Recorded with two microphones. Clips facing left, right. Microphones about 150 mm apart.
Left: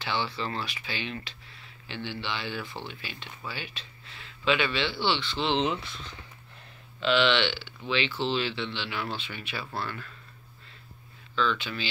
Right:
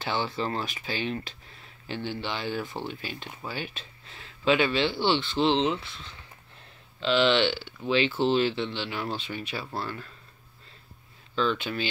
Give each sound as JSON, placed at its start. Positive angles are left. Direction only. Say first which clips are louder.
{"t": 0.0, "sound": "speech", "louder": "right 2 dB", "side_deg": -45}
{"t": 5.6, "sound": "speech", "louder": "right 2 dB", "side_deg": -25}
{"t": 7.0, "sound": "speech", "louder": "right 2 dB", "side_deg": -35}
{"t": 11.3, "sound": "speech", "louder": "right 2 dB", "side_deg": -45}